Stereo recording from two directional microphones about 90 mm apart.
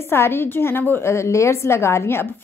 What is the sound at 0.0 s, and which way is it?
A woman's voice, 25° left (ahead or behind).